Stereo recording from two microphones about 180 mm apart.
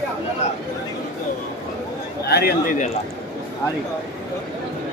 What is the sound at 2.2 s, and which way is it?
Speech, 60° left (ahead or behind).